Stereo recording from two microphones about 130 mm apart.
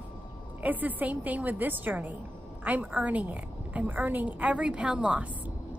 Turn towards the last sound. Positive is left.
turn(degrees=-10)  # may be behind; listen again after turning